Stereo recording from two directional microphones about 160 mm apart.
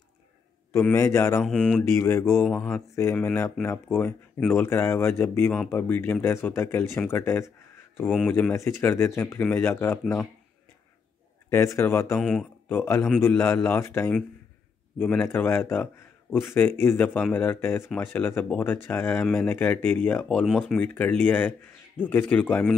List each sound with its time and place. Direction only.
0.7 s speech: 15° left (ahead or behind)
1.4 s speech: 5° left (ahead or behind)
2.0 s speech: 15° left (ahead or behind)
2.4 s speech: centre (ahead or behind)
2.7 s speech: 15° left (ahead or behind)
11.5 s speech: 15° left (ahead or behind)
12.2 s speech: 5° left (ahead or behind)
20.5 s speech: centre (ahead or behind)
20.8 s speech: 10° left (ahead or behind)